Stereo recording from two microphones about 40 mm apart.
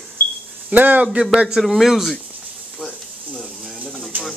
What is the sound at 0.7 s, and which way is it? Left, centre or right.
Speech, right.